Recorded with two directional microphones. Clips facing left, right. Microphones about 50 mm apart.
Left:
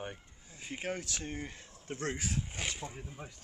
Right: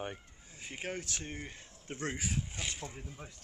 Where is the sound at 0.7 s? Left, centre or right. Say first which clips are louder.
Left 2 dB; centre.